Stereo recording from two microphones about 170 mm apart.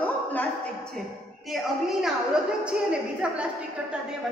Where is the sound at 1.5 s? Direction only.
Centre (ahead or behind).